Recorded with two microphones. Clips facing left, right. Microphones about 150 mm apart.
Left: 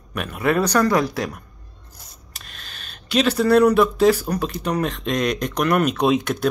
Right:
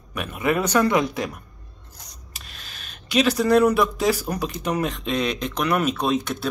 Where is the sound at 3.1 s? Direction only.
10° right (ahead or behind).